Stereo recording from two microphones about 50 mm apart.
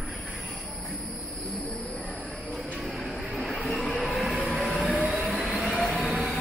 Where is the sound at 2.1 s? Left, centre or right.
Left.